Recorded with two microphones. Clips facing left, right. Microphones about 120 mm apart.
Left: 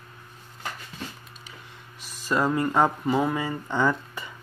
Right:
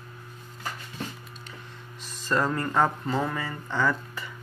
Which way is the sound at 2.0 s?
10° left (ahead or behind).